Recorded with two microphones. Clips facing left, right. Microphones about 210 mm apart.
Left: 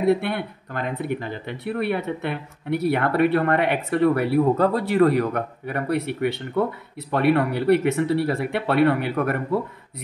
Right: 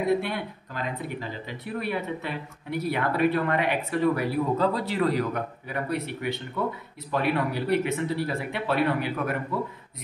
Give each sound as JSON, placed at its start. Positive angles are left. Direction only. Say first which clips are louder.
{"t": 0.2, "sound": "speech", "louder": "left 4 dB", "side_deg": 60}